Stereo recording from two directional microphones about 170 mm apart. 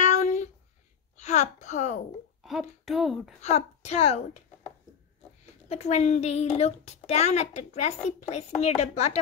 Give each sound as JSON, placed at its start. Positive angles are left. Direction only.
{"t": 0.0, "sound": "a sound", "side_deg": 45}
{"t": 2.4, "sound": "speech", "side_deg": 0}
{"t": 3.4, "sound": "a woman's voice", "side_deg": 40}
{"t": 5.7, "sound": "a woman's voice", "side_deg": 40}